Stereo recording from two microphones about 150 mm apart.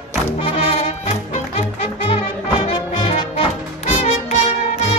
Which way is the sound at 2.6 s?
40° left (ahead or behind).